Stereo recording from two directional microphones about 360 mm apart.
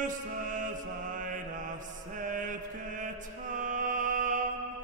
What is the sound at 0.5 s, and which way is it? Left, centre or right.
Mantra, right.